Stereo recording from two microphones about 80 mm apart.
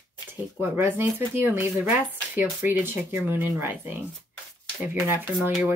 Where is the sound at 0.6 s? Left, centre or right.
Right.